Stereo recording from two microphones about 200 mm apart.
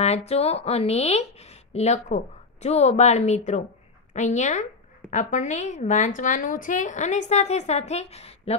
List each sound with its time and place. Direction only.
0.0 s a woman's voice: 30° left (ahead or behind)